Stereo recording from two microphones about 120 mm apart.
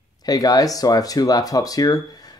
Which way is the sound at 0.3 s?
30° left (ahead or behind).